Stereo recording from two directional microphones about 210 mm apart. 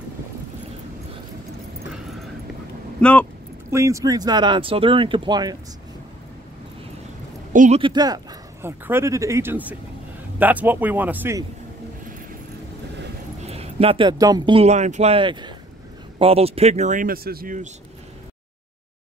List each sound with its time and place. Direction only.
3.0 s speech: 5° left (ahead or behind)
3.7 s speech: 15° right (ahead or behind)
7.5 s speech: 35° right (ahead or behind)
7.8 s speech: 20° right (ahead or behind)
13.4 s speech: 30° right (ahead or behind)